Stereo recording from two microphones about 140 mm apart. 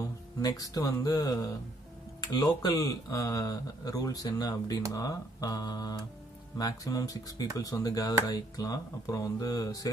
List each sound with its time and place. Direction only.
0.0 s speech: 25° left (ahead or behind)